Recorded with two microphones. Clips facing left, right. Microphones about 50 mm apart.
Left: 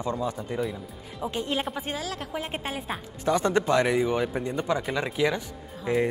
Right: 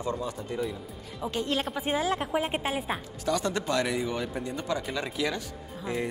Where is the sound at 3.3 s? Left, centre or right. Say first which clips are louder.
Left 5 dB; left.